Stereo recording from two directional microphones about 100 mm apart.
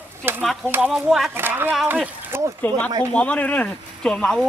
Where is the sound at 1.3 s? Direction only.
20° right (ahead or behind).